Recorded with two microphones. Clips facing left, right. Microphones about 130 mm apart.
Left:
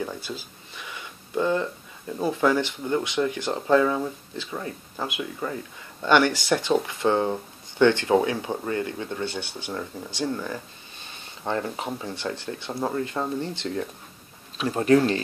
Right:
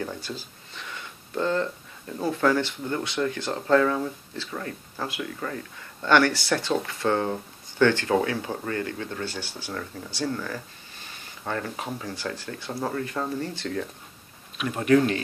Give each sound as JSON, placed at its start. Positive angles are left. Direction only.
{"t": 0.7, "sound": "a sound", "side_deg": 10}
{"t": 2.1, "sound": "speech", "side_deg": 15}
{"t": 14.6, "sound": "speech", "side_deg": 30}